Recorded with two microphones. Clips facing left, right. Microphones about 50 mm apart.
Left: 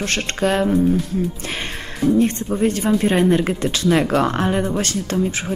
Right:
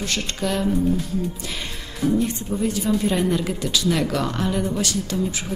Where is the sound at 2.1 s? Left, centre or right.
Left.